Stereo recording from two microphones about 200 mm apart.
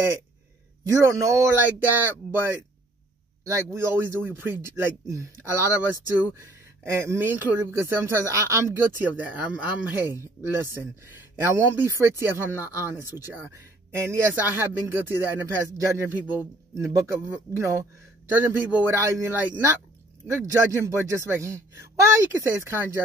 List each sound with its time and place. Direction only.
0.9 s speech: 15° right (ahead or behind)